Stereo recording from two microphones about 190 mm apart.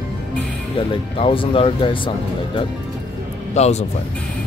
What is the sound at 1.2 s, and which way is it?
Speech, 30° left (ahead or behind).